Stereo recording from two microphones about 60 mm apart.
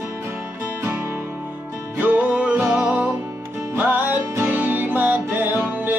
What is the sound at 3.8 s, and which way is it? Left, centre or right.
Music, right.